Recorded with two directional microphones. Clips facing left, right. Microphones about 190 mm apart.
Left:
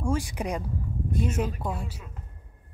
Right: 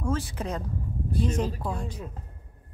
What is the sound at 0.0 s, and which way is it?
Speech, 15° left (ahead or behind).